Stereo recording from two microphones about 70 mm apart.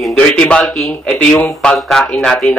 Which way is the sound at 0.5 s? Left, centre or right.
Centre.